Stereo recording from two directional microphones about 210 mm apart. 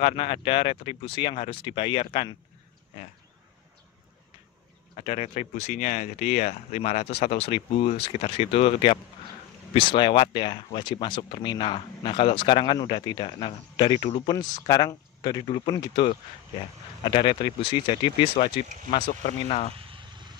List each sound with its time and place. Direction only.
0.0 s speech: 25° left (ahead or behind)
4.9 s speech: 30° left (ahead or behind)
19.7 s vehicle: 25° right (ahead or behind)